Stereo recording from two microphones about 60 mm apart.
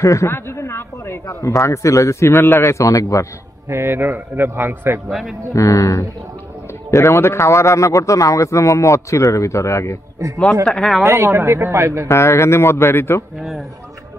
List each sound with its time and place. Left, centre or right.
0.0 s a man's voice: left
0.3 s a sound: left
1.2 s a man's voice: left
2.8 s a man's voice: left
3.6 s a man's voice: right
5.5 s a man's voice: left
6.9 s a man's voice: left
10.2 s speech: right
10.6 s speech: centre
11.1 s speech: right
12.1 s a man's voice: left
13.4 s speech: centre